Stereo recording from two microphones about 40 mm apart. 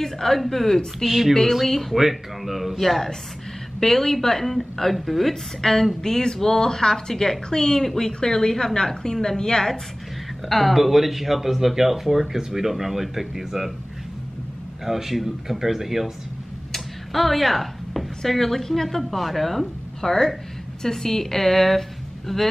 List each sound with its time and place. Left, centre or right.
0.0 s a woman's voice: centre
0.9 s a woman's voice: centre
10.5 s speech: centre
14.9 s speech: centre